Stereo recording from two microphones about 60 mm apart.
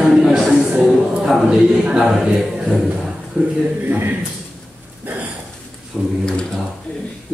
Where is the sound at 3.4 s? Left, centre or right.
Right.